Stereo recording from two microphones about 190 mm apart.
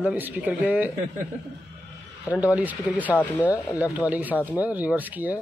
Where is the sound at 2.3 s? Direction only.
5° right (ahead or behind).